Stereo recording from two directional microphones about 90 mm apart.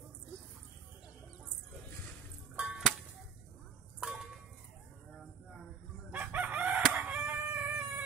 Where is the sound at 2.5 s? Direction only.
5° right (ahead or behind).